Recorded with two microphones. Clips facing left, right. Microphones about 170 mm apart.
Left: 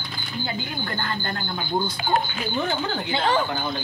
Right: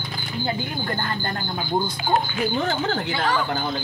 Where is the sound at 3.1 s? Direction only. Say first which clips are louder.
Left 4 dB; 25° left (ahead or behind).